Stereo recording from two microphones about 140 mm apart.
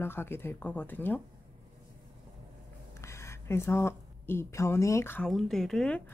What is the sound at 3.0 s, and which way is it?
Speech, 20° left (ahead or behind).